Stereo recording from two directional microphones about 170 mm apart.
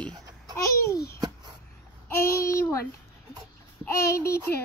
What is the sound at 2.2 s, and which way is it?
Speech, 15° left (ahead or behind).